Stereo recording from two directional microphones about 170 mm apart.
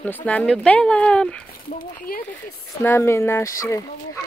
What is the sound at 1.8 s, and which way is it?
Speech, 55° left (ahead or behind).